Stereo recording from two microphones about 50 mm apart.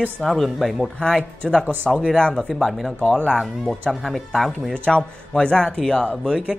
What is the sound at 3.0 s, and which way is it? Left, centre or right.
Speech, left.